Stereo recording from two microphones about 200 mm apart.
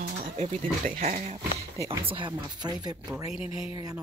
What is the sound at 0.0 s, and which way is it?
Speech, 40° right (ahead or behind).